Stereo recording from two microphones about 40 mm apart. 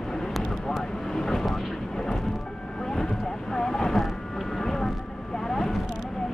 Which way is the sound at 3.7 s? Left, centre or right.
Centre.